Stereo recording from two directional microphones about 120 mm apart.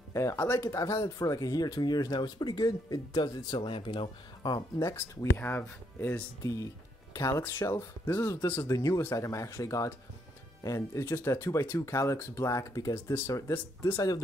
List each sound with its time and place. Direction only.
0.1 s speech: 25° left (ahead or behind)
4.7 s speech: 25° left (ahead or behind)
12.9 s speech: 20° left (ahead or behind)